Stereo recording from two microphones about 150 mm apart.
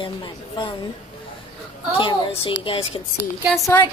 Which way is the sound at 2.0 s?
35° left (ahead or behind).